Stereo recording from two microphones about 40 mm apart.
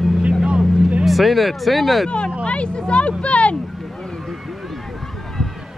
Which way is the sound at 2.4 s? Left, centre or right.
Left.